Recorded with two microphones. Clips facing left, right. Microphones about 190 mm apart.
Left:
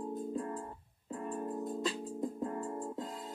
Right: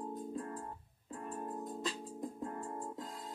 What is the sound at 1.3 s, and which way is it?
Music, 30° left (ahead or behind).